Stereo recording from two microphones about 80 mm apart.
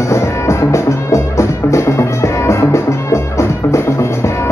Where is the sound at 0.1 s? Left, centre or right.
Left.